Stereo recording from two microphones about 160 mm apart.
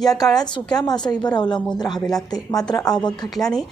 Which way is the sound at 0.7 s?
25° left (ahead or behind).